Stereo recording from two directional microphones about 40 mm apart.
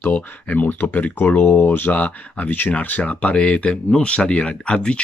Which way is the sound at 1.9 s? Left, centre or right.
Left.